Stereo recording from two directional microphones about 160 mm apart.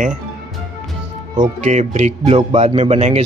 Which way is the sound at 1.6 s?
45° right (ahead or behind).